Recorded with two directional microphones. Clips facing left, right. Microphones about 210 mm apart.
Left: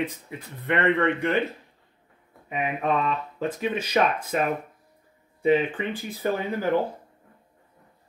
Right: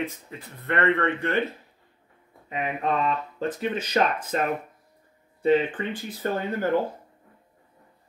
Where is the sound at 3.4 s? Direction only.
10° left (ahead or behind).